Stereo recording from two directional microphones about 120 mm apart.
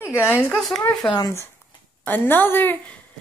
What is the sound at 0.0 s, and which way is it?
Speech, 20° left (ahead or behind).